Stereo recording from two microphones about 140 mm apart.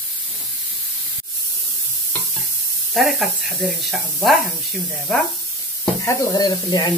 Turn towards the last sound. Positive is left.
turn(degrees=30)  # may be behind; listen again after turning